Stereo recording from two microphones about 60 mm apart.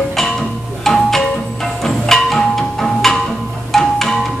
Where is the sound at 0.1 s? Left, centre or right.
Centre.